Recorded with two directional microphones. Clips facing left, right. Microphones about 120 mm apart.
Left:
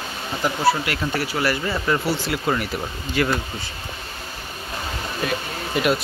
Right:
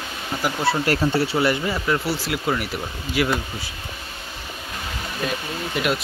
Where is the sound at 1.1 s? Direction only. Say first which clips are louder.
Right 3 dB; 25° right (ahead or behind).